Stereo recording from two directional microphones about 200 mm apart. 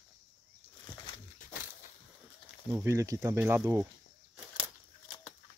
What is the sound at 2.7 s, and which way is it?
Speech, 15° right (ahead or behind).